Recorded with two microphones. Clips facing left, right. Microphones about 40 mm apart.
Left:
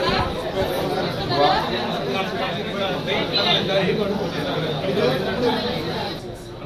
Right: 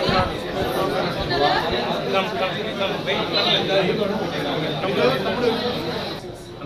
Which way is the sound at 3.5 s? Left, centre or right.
Right.